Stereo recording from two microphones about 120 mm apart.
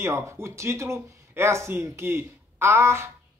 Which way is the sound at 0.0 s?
25° right (ahead or behind).